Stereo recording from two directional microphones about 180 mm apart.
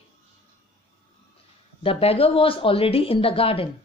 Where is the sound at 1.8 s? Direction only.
30° left (ahead or behind).